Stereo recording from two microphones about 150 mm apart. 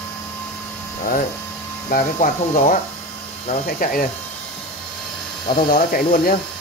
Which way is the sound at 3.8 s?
65° left (ahead or behind).